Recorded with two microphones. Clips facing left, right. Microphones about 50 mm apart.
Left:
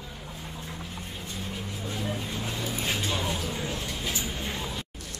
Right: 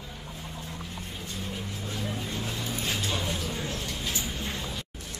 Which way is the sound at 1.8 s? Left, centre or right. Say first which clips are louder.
Left 2 dB; centre.